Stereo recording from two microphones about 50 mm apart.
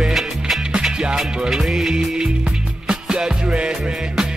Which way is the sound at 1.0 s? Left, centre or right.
Centre.